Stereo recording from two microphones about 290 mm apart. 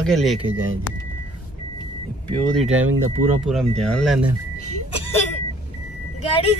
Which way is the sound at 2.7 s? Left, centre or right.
Right.